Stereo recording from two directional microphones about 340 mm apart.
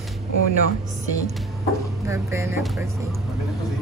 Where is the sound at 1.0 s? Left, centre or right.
Right.